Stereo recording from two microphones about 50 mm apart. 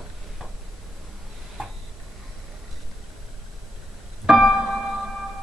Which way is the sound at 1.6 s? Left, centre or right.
Centre.